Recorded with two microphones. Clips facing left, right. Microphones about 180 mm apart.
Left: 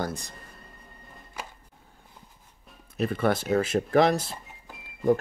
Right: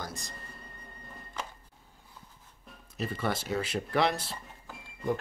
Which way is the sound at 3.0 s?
60° left (ahead or behind).